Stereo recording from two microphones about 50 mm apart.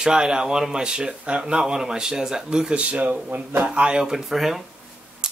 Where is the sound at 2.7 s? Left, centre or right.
Right; by 4.6 s centre.